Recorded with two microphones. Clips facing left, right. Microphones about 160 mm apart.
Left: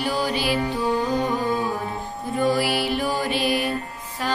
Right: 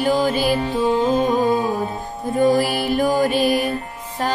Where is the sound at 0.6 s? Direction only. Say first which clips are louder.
Right 5 dB; 20° right (ahead or behind).